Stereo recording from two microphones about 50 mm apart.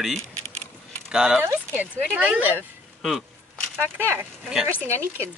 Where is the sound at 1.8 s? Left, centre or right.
Right.